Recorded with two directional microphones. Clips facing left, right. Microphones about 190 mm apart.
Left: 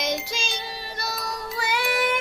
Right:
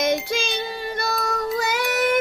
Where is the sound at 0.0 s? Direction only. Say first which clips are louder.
Right 6 dB; 55° right (ahead or behind).